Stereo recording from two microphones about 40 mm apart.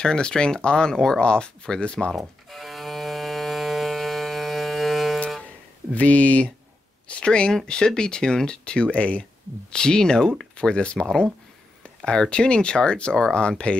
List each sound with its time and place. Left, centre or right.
0.0 s speech: centre
2.1 s music: centre
5.9 s speech: left
7.1 s speech: left
9.7 s speech: centre